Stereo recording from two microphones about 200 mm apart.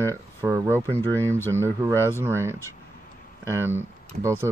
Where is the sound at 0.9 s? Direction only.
10° left (ahead or behind).